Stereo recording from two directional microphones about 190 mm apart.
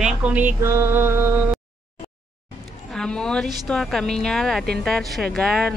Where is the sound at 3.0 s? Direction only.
5° left (ahead or behind).